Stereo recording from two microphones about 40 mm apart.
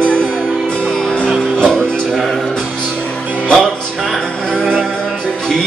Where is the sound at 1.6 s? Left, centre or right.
Centre.